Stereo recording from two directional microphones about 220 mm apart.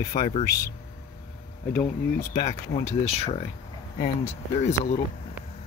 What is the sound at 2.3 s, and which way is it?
Speech, 35° left (ahead or behind).